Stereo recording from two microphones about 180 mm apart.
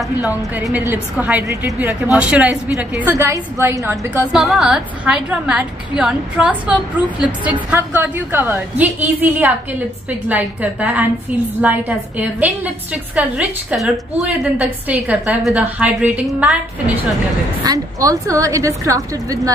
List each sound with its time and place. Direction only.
0.3 s a woman's voice: 15° right (ahead or behind)
17.6 s a woman's voice: 15° right (ahead or behind)